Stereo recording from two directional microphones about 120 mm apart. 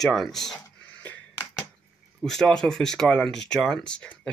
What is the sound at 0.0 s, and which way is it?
Speech, centre (ahead or behind).